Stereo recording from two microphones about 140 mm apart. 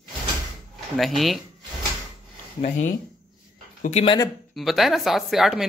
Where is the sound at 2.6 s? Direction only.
65° left (ahead or behind).